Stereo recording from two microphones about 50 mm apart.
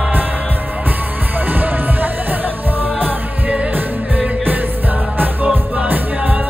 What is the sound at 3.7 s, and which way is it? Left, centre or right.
Music, right.